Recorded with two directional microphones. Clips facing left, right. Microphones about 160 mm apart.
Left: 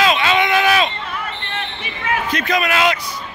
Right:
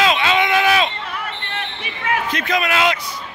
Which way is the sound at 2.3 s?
25° right (ahead or behind).